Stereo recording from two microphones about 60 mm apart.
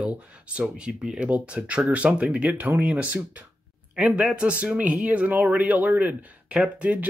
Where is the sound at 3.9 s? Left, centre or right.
Centre.